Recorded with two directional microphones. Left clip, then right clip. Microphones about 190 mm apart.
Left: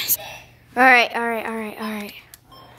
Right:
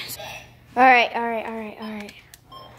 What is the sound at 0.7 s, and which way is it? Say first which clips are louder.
Speech: left 1 dB; 15° left (ahead or behind).